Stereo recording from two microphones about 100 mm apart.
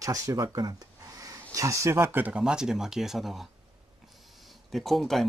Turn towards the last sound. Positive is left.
turn(degrees=0)  # may be behind; listen again after turning